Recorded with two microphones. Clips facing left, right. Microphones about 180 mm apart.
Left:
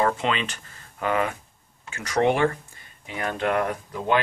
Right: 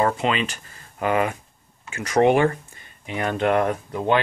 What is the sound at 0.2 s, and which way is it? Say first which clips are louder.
Speech: right 3 dB; 10° right (ahead or behind).